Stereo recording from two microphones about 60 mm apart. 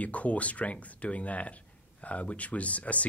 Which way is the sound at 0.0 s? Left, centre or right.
Left.